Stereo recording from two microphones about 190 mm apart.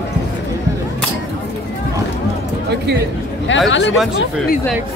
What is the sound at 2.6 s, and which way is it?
Speech, 60° right (ahead or behind).